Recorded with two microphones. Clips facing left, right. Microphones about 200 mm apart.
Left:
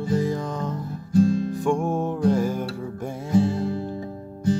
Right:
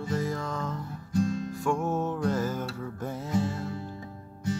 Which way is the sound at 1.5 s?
15° left (ahead or behind).